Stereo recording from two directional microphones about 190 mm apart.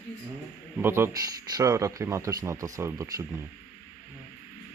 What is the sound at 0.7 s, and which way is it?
Speech, 10° right (ahead or behind).